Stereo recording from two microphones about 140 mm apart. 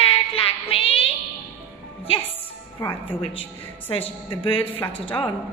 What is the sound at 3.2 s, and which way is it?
A woman's voice, 40° left (ahead or behind).